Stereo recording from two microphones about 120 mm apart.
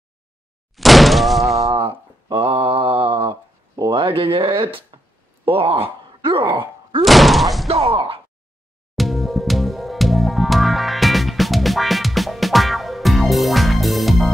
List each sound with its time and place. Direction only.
0.7 s thunk: centre (ahead or behind)
1.6 s mantra: 55° right (ahead or behind)
3.7 s speech: 35° right (ahead or behind)
7.0 s thunk: centre (ahead or behind)
7.6 s speech: 55° right (ahead or behind)
8.9 s music: centre (ahead or behind)